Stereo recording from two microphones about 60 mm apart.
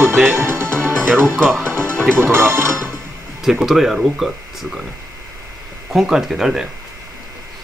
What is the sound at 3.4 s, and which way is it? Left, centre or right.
Speech, centre.